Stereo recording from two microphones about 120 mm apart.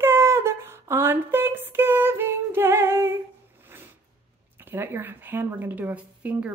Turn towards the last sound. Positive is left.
turn(degrees=-10)  # may be behind; listen again after turning